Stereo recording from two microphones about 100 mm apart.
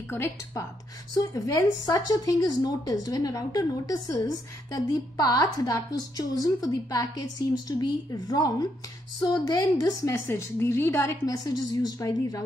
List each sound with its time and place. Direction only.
0.1 s speech: 25° left (ahead or behind)
1.1 s a woman's voice: 40° left (ahead or behind)